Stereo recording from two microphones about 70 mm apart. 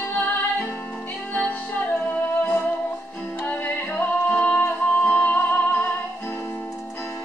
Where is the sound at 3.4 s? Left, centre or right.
Left.